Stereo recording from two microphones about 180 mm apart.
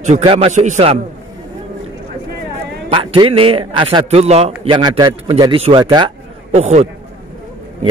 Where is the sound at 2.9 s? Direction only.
30° right (ahead or behind).